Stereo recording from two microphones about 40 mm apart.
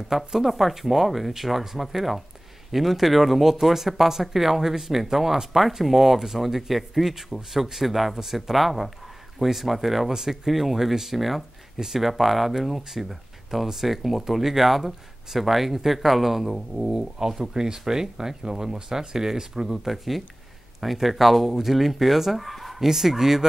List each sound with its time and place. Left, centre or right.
0.1 s speech: centre
17.4 s speech: centre
19.9 s speech: centre